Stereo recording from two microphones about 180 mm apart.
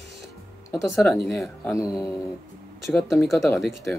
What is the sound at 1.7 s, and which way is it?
Speech, 20° left (ahead or behind).